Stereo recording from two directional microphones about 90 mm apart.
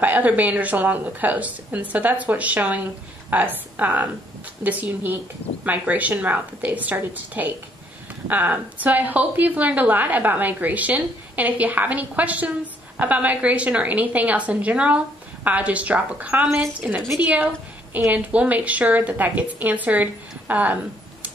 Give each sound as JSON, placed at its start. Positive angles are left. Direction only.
{"t": 0.0, "sound": "a woman's voice", "side_deg": -20}